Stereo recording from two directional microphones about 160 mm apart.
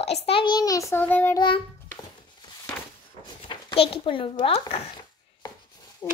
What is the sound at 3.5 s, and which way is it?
A child's voice, 30° left (ahead or behind).